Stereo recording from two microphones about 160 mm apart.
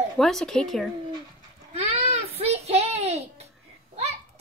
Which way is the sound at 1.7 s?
40° right (ahead or behind).